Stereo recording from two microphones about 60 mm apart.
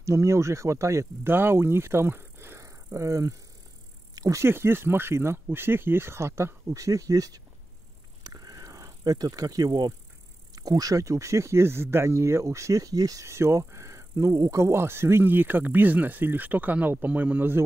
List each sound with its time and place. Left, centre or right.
0.0 s speech: right
1.2 s speech: right
2.6 s vehicle: right
4.1 s a sound: right
4.4 s speech: right
6.7 s speech: right
8.2 s vehicle: right
10.5 s speech: right
13.3 s speech: right